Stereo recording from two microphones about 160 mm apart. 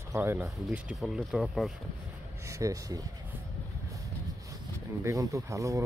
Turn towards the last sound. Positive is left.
turn(degrees=-20)  # may be behind; listen again after turning